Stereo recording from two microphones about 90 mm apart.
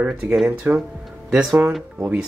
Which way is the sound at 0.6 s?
25° right (ahead or behind).